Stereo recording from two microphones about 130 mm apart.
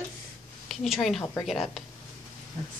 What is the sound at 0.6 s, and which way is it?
A woman's voice, centre (ahead or behind).